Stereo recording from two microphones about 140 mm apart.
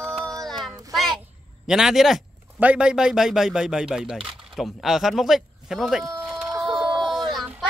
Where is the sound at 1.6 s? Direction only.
5° right (ahead or behind).